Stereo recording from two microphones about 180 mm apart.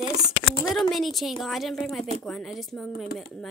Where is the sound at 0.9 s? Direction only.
Centre (ahead or behind).